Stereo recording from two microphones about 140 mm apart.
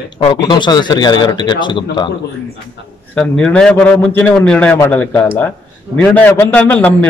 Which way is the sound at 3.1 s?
5° left (ahead or behind).